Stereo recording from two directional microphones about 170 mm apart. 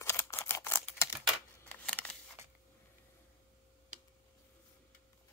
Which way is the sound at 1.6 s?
10° left (ahead or behind).